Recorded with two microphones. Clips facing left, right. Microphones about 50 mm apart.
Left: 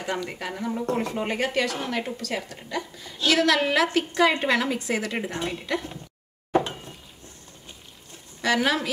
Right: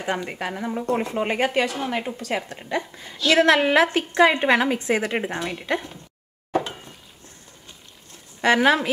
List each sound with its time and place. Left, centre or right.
0.0 s a woman's voice: right
8.4 s a woman's voice: right